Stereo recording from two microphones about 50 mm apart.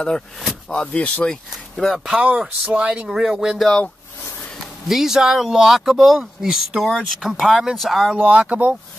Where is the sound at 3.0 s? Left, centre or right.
Centre.